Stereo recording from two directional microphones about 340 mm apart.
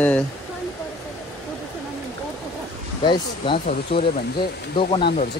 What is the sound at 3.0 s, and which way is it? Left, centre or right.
Speech, centre.